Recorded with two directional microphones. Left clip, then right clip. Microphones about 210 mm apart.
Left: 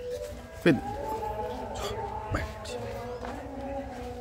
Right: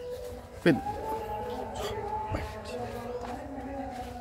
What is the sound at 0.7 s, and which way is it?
Speech, centre (ahead or behind).